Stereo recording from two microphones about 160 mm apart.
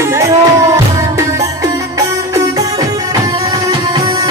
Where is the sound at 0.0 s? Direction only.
20° right (ahead or behind).